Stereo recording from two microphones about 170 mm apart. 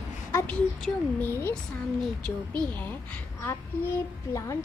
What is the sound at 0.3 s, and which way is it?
A woman's voice, 15° left (ahead or behind).